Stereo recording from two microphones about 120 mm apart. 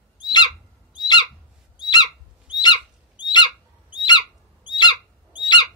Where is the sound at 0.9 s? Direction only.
40° left (ahead or behind).